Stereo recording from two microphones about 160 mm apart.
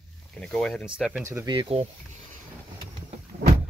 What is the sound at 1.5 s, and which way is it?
Speech, 35° right (ahead or behind).